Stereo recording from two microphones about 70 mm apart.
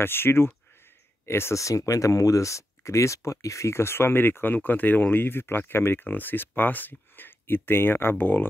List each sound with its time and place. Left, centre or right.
0.0 s speech: left